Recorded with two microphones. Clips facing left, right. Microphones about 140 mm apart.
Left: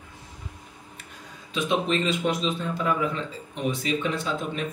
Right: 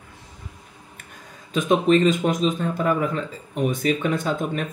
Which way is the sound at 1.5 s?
45° right (ahead or behind).